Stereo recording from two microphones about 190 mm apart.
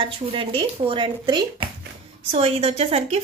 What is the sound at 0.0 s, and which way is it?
Speech, 30° right (ahead or behind).